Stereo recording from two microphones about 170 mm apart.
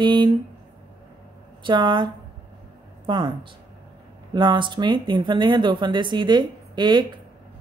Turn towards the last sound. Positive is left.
turn(degrees=-25)  # may be behind; listen again after turning